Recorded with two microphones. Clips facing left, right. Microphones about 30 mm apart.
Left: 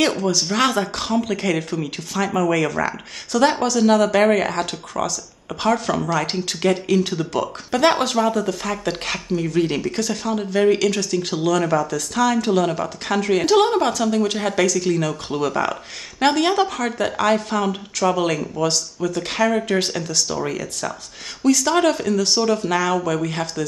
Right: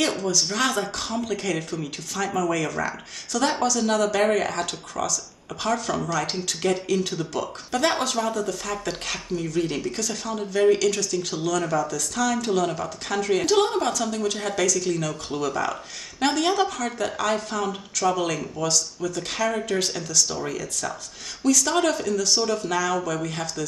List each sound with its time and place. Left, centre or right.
0.2 s speech: left
0.5 s speech: left
14.1 s speech: left
14.6 s speech: left
18.6 s speech: left
21.9 s speech: left